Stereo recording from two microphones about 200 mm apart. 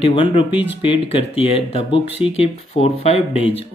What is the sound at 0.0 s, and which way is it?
Speech, 30° left (ahead or behind).